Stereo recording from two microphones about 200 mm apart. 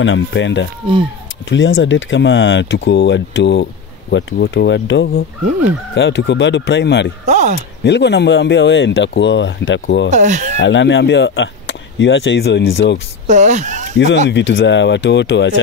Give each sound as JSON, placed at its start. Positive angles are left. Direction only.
{"t": 0.0, "sound": "speech", "side_deg": 70}
{"t": 7.2, "sound": "speech", "side_deg": -35}
{"t": 7.8, "sound": "speech", "side_deg": 60}
{"t": 10.0, "sound": "speech", "side_deg": -35}
{"t": 10.6, "sound": "speech", "side_deg": 65}
{"t": 13.3, "sound": "speech", "side_deg": -35}
{"t": 14.3, "sound": "speech", "side_deg": 65}